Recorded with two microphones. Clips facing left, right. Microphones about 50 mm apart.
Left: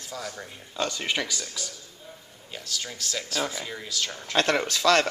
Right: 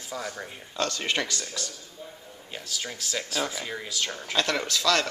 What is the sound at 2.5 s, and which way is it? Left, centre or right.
Speech, centre.